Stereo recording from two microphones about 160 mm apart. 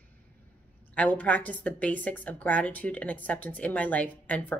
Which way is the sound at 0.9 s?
10° left (ahead or behind).